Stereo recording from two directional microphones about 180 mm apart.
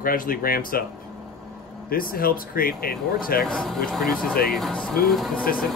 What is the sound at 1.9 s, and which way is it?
Speech, 55° left (ahead or behind).